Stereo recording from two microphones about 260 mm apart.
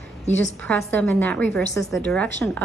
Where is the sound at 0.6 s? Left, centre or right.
Centre.